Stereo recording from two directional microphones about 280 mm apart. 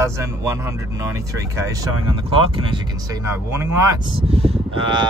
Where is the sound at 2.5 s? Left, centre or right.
Centre.